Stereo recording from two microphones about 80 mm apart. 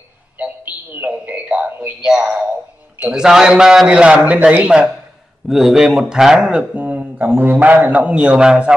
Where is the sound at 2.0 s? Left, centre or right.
Centre.